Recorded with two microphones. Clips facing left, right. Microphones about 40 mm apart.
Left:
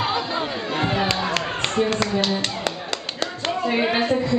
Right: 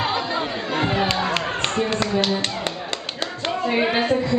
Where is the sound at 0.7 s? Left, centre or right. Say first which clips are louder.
Right 1 dB; centre.